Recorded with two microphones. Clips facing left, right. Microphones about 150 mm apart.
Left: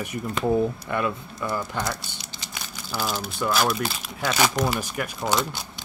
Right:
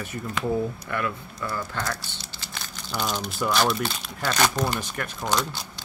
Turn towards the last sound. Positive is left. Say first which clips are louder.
# left 2 dB
turn(degrees=10)  # may be behind; listen again after turning